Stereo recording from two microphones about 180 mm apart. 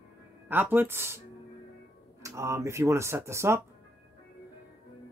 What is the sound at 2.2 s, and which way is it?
Speech, 15° right (ahead or behind).